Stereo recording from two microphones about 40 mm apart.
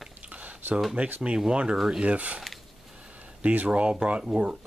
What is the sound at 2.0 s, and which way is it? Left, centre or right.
Speech, right.